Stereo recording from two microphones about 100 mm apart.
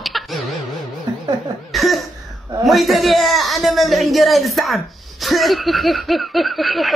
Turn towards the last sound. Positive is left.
turn(degrees=0)  # may be behind; listen again after turning